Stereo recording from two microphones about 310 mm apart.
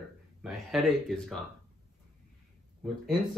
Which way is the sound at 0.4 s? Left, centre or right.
Centre.